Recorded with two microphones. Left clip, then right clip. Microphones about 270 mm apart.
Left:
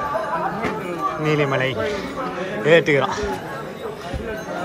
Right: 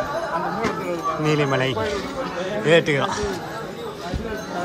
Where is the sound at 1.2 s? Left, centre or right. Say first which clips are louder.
Left 1 dB; centre.